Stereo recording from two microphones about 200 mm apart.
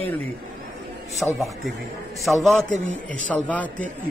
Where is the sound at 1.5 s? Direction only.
Centre (ahead or behind).